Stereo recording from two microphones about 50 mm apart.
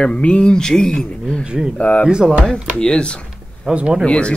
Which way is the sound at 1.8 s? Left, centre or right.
Left.